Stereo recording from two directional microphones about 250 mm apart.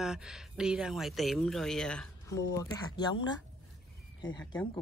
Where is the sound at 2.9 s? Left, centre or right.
Centre.